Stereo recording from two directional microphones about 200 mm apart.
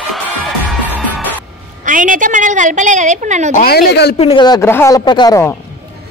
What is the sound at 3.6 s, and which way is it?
Speech, 50° left (ahead or behind).